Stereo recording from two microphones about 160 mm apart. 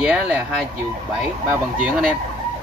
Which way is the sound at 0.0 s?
10° right (ahead or behind).